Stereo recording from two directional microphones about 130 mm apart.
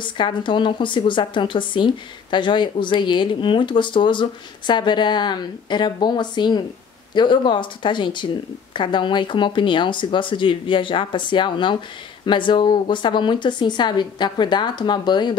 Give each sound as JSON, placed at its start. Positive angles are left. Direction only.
{"t": 0.0, "sound": "speech", "side_deg": 40}